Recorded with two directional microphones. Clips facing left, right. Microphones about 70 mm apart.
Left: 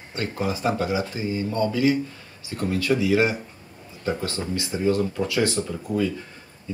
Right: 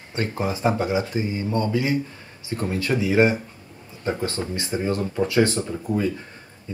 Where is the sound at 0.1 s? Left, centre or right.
Right.